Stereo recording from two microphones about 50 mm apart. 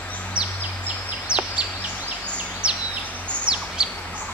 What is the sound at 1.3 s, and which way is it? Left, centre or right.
Bird, right.